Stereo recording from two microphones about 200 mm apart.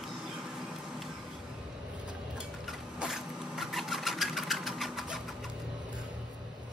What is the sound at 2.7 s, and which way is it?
Sewing machine, centre (ahead or behind).